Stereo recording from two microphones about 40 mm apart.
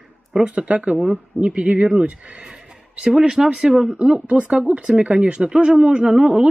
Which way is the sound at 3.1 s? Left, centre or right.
Centre.